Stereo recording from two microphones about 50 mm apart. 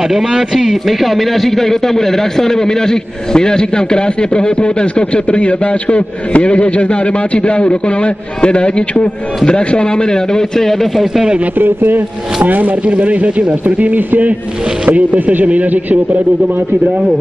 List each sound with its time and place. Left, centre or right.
0.1 s a man's voice: centre
11.5 s a man's voice: right
12.8 s a man's voice: right